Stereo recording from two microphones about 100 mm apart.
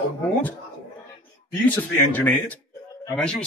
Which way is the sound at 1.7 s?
15° left (ahead or behind).